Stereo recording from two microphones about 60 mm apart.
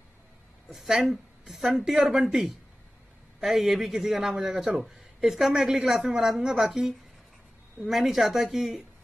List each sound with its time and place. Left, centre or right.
0.7 s a man's voice: centre